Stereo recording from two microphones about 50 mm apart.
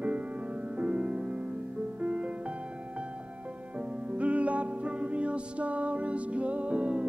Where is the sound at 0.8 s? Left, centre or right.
Right.